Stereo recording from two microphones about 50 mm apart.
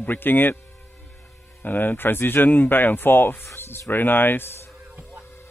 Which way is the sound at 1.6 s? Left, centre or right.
Left.